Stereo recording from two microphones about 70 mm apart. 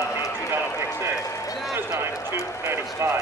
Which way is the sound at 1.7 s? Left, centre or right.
Right.